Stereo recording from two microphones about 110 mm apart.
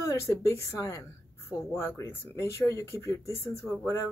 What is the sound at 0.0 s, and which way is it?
Speech, 30° left (ahead or behind).